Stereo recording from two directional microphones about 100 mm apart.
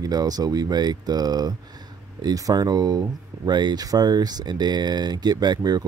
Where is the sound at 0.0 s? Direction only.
40° right (ahead or behind).